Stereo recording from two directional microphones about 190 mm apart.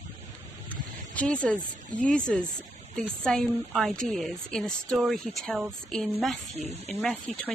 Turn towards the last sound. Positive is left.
turn(degrees=5)  # may be behind; listen again after turning